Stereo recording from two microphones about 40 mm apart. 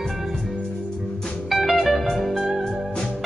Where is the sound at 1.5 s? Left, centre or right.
Centre.